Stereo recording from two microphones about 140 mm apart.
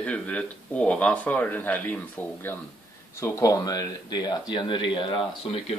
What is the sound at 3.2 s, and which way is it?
Speech, 25° left (ahead or behind).